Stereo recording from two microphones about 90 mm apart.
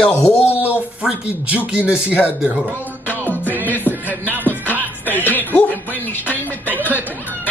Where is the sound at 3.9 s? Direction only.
20° right (ahead or behind).